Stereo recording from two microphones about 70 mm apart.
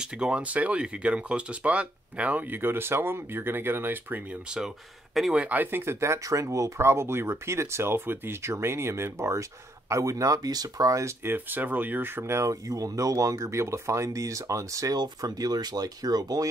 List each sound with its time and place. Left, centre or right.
0.0 s speech: centre
4.5 s speech: centre
5.3 s speech: right
11.2 s speech: right
12.4 s speech: right
15.0 s speech: right